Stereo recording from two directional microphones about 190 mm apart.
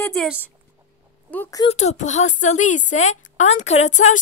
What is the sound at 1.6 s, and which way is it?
A woman's voice, 35° left (ahead or behind).